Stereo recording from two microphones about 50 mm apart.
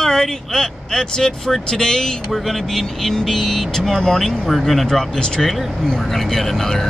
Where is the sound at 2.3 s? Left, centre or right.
Centre.